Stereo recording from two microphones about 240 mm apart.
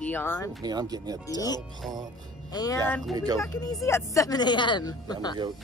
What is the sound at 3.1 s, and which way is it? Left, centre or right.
Speech, centre.